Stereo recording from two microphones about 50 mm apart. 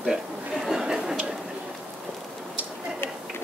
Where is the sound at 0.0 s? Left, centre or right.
Centre.